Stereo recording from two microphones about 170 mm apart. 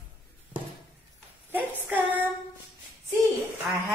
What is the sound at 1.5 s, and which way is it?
Female singing, 10° right (ahead or behind).